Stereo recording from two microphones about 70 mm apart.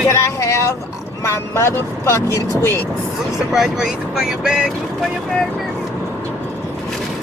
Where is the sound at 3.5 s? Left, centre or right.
Centre.